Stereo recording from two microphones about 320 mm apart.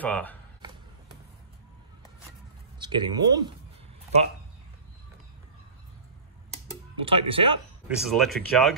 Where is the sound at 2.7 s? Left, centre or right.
Centre.